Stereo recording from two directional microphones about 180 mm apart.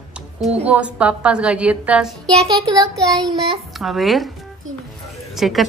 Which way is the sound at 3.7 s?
Centre (ahead or behind).